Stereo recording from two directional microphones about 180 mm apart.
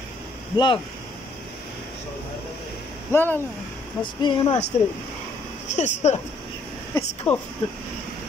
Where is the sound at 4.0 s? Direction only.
25° left (ahead or behind).